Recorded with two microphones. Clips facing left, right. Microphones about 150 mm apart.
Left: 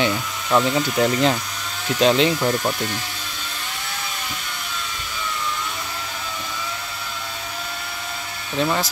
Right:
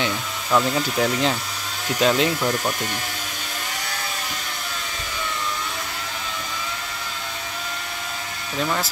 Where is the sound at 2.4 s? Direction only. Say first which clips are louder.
Left 2 dB; 10° left (ahead or behind).